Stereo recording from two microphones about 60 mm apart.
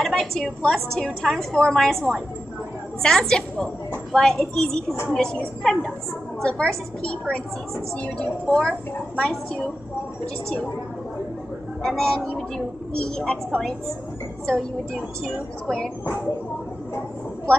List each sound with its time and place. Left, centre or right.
0.0 s a woman's voice: centre
11.8 s a woman's voice: centre
15.0 s speech: centre